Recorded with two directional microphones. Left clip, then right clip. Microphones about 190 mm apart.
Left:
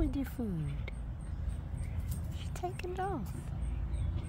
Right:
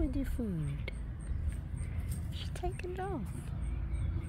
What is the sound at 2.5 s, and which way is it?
Speech, centre (ahead or behind).